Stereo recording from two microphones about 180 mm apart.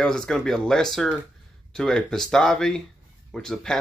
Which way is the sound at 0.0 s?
5° left (ahead or behind).